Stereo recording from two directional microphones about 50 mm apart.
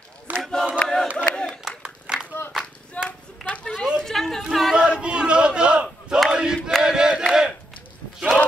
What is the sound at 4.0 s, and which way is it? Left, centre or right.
Chatter, centre.